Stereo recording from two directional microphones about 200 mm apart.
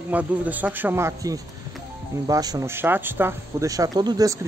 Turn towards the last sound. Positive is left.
turn(degrees=-15)  # may be behind; listen again after turning